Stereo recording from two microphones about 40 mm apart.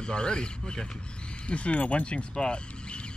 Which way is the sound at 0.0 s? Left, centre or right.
Left.